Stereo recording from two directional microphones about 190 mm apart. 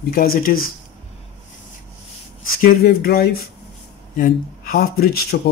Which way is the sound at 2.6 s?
50° left (ahead or behind).